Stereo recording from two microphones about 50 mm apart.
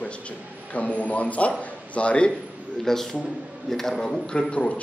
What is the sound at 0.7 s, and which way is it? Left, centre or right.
A man's voice, left.